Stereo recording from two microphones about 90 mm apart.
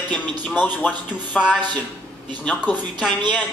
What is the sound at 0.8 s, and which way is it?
Speech, 15° left (ahead or behind).